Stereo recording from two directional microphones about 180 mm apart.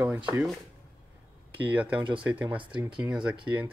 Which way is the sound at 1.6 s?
10° right (ahead or behind).